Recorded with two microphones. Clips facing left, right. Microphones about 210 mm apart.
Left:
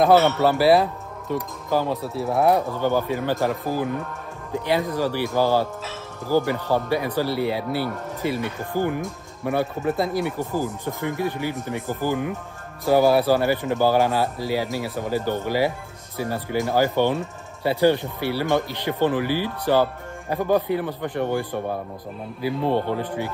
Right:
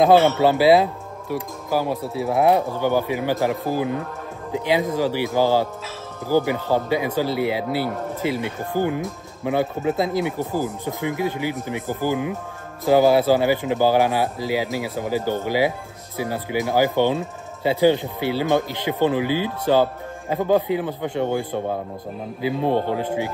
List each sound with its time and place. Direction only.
0.0 s speech: 15° right (ahead or behind)